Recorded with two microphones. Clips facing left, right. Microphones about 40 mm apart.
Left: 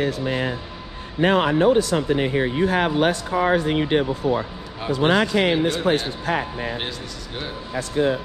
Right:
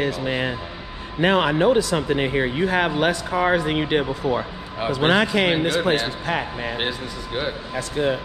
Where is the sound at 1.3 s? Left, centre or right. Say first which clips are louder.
Left 1 dB; right.